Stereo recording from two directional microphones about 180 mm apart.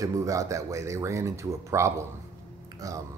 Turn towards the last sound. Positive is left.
turn(degrees=-20)  # may be behind; listen again after turning